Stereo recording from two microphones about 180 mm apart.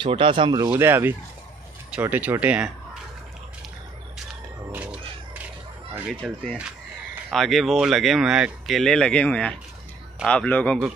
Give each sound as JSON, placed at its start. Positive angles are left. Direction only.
{"t": 0.0, "sound": "speech", "side_deg": -30}
{"t": 0.7, "sound": "speech", "side_deg": -10}
{"t": 4.7, "sound": "a sound", "side_deg": -5}
{"t": 5.9, "sound": "speech", "side_deg": -5}